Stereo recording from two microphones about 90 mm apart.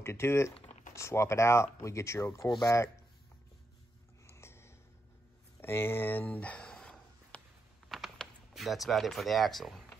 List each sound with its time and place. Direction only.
0.0 s speech: 30° left (ahead or behind)
4.3 s a sound: 30° left (ahead or behind); by 7.4 s 10° left (ahead or behind)
7.9 s typing: centre (ahead or behind)